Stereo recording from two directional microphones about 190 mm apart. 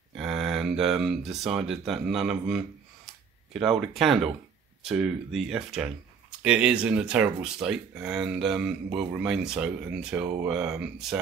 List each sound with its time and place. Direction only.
0.1 s speech: centre (ahead or behind)